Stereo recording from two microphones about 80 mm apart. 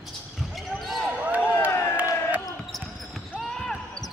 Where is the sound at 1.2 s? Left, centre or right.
Right.